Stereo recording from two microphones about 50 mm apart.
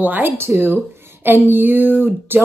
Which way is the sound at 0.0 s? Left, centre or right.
Right.